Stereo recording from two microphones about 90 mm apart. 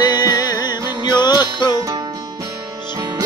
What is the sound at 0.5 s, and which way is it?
Music, 50° left (ahead or behind).